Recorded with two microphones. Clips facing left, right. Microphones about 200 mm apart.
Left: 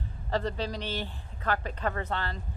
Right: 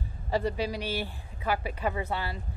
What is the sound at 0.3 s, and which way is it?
A woman's voice, 10° right (ahead or behind).